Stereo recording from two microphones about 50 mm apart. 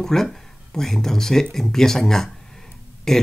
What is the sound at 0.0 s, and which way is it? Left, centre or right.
Speech, centre.